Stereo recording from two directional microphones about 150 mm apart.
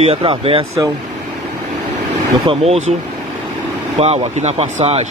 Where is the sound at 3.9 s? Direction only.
45° right (ahead or behind).